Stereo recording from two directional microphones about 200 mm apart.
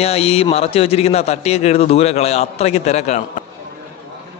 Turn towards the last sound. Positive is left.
turn(degrees=35)  # may be behind; listen again after turning